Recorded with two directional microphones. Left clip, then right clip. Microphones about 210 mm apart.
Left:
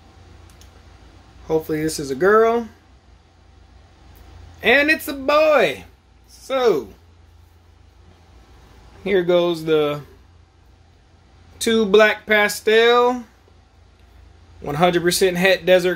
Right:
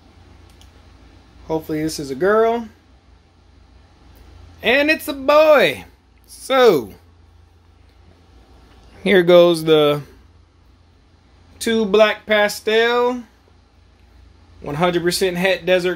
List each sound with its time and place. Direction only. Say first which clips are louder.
1.5 s speech: left 1 dB; centre (ahead or behind)
4.6 s speech: even; centre (ahead or behind); by 5.8 s 25° right (ahead or behind)
6.4 s speech: right 5 dB; 45° right (ahead or behind)
9.0 s speech: right 6 dB; 35° right (ahead or behind)
11.5 s speech: left 1 dB; 5° right (ahead or behind)
14.6 s speech: left 1 dB; centre (ahead or behind)